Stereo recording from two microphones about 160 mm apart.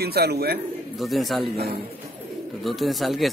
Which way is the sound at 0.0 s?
80° right.